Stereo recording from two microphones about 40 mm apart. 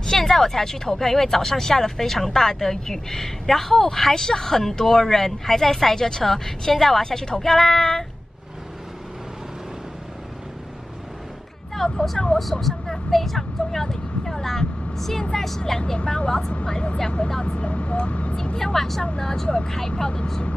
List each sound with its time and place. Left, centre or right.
0.0 s speech: centre
11.7 s speech: centre
17.5 s speech: left
18.3 s speech: centre